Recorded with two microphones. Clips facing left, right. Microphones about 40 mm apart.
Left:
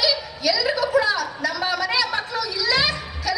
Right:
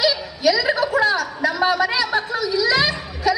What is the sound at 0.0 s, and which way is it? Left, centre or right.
Chuckle, centre.